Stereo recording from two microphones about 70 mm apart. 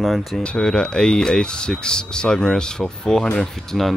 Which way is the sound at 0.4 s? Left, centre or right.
Centre.